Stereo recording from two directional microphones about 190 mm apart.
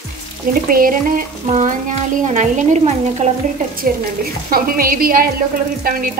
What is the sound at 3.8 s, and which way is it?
Speech, 45° right (ahead or behind).